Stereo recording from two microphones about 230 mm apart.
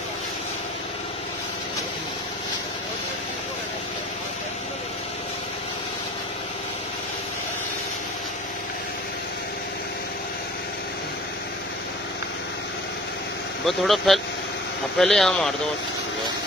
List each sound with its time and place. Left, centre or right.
13.7 s speech: centre